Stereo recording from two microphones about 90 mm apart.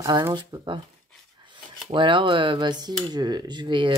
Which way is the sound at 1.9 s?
65° right (ahead or behind).